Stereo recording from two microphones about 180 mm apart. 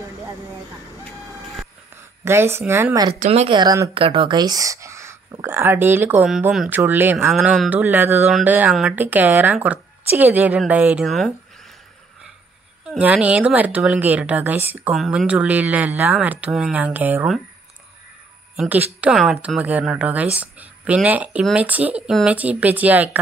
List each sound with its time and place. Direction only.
2.2 s speech: 15° right (ahead or behind)
3.2 s speech: 35° right (ahead or behind); by 7.2 s 10° right (ahead or behind)
7.2 s speech: centre (ahead or behind)
12.8 s speech: 5° right (ahead or behind)
18.6 s speech: 10° right (ahead or behind)